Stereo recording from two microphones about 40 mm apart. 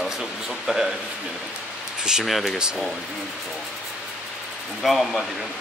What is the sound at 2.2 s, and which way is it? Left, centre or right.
Speech, centre.